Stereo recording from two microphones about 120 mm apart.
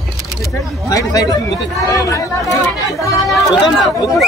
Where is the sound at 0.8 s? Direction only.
30° left (ahead or behind).